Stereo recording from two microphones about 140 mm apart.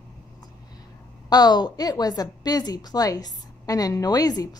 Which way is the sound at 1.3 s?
30° left (ahead or behind).